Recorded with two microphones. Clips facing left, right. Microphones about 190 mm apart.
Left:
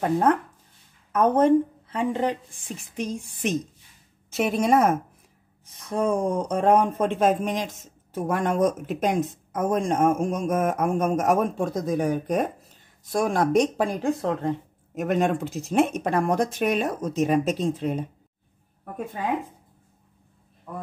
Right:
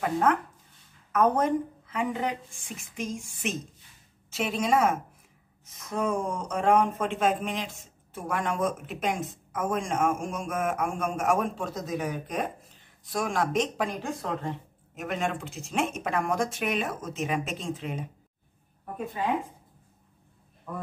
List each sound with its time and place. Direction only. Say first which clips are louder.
0.0 s a woman's voice: left 4 dB; 35° left (ahead or behind)
4.3 s a woman's voice: left 5 dB; 50° left (ahead or behind)
5.8 s speech: left 5 dB; 30° left (ahead or behind)
15.0 s speech: left 8 dB; 45° left (ahead or behind)